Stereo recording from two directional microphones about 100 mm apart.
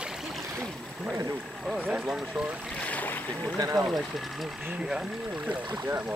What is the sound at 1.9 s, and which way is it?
Speech, 5° right (ahead or behind).